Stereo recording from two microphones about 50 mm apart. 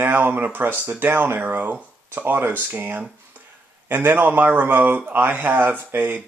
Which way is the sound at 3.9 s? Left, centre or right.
Right.